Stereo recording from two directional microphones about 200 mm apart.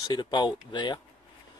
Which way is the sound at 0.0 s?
20° left (ahead or behind).